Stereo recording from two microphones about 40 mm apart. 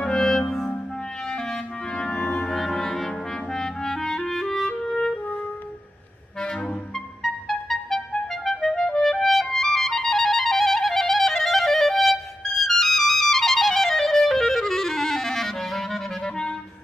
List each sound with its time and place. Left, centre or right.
0.0 s clarinet: centre
1.3 s clarinet: centre
2.3 s music: centre
3.5 s clarinet: centre
7.4 s music: centre
8.5 s clarinet: centre